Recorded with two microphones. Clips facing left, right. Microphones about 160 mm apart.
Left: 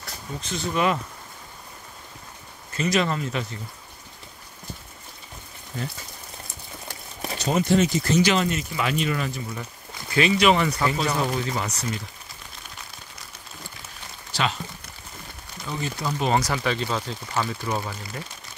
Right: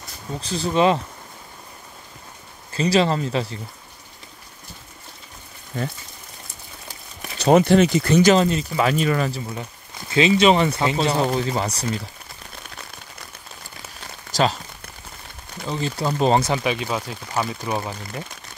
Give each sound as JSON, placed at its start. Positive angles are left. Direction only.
{"t": 0.4, "sound": "speech", "side_deg": -35}
{"t": 2.7, "sound": "speech", "side_deg": -30}
{"t": 7.3, "sound": "speech", "side_deg": -75}
{"t": 8.2, "sound": "speech", "side_deg": -40}
{"t": 10.1, "sound": "speech", "side_deg": -25}
{"t": 14.3, "sound": "speech", "side_deg": -35}
{"t": 15.7, "sound": "speech", "side_deg": -30}